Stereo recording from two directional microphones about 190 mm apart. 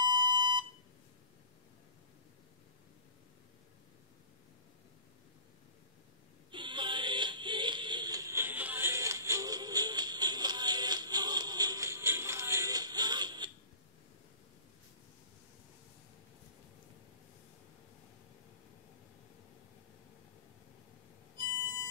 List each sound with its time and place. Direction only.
0.0 s alarm clock: 20° right (ahead or behind)
6.5 s music: 25° right (ahead or behind)